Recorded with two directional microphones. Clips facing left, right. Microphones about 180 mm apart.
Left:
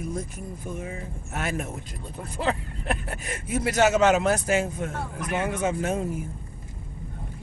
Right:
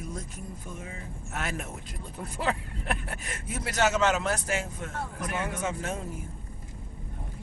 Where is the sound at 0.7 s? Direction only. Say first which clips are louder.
Left 9 dB; 55° left (ahead or behind).